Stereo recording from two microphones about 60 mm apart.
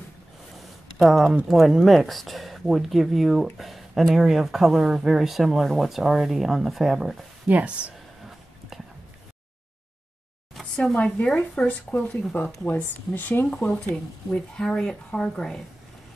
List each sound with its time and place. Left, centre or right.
0.6 s a sound: centre
1.5 s speech: centre
7.4 s speech: right
10.8 s speech: centre; by 13.5 s left
13.5 s speech: centre